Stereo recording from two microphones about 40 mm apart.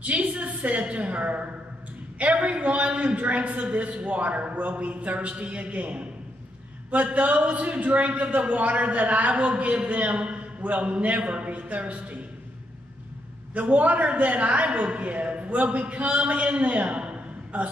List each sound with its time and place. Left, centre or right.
0.0 s a man's voice: right
7.1 s a man's voice: right
13.6 s a man's voice: right